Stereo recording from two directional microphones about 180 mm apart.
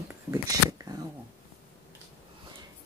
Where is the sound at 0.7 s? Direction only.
20° right (ahead or behind).